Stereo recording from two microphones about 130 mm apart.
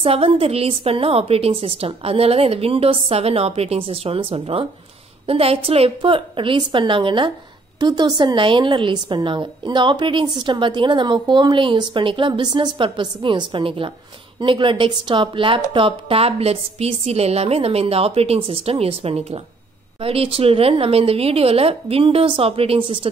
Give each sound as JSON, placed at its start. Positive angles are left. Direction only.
{"t": 0.0, "sound": "a woman's voice", "side_deg": -45}